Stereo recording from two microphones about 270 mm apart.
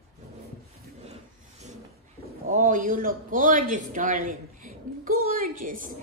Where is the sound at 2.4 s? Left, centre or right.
Right.